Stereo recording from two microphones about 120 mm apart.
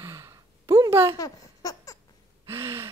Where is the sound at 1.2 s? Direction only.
30° left (ahead or behind).